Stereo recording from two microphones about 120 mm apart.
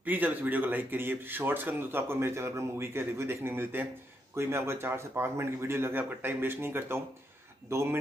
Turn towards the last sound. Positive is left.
turn(degrees=-20)  # may be behind; listen again after turning